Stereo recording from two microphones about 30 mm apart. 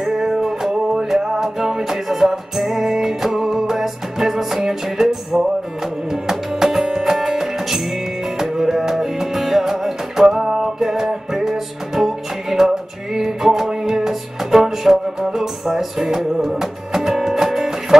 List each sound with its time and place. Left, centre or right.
0.0 s music: centre